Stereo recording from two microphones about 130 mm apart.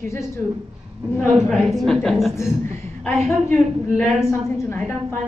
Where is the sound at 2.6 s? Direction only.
60° right (ahead or behind).